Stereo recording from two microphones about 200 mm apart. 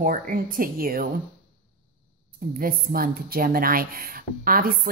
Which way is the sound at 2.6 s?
45° right (ahead or behind).